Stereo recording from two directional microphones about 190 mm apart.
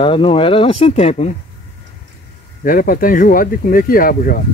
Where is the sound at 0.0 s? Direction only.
25° left (ahead or behind).